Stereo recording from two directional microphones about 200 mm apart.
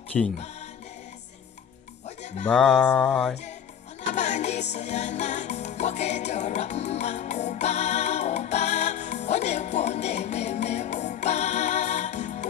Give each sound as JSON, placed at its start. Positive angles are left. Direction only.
{"t": 0.1, "sound": "music", "side_deg": 0}
{"t": 2.4, "sound": "music", "side_deg": 5}
{"t": 4.1, "sound": "music", "side_deg": 35}